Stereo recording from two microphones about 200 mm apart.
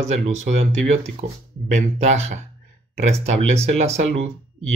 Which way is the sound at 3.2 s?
35° right (ahead or behind).